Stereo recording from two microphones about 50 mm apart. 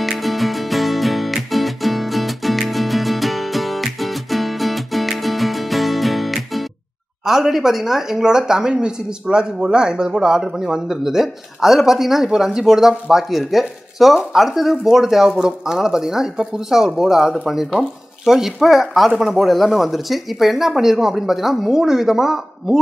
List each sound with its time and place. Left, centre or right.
0.0 s music: centre
7.2 s speech: centre